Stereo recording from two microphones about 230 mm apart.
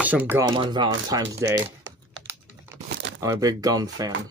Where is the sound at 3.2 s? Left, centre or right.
Centre.